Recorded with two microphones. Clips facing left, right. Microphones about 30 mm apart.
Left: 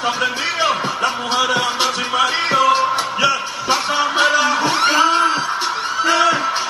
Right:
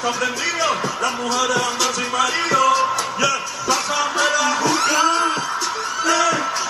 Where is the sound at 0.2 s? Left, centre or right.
Left.